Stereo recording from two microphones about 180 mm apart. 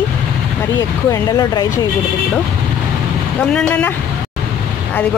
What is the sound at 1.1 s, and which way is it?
Speech, 20° left (ahead or behind).